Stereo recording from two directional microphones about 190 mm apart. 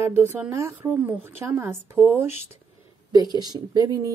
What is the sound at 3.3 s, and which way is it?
Speech, 20° right (ahead or behind).